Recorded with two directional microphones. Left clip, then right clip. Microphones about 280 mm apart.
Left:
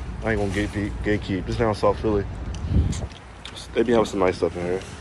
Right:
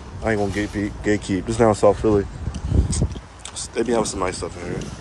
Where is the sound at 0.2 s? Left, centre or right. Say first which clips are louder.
Right 3 dB; right.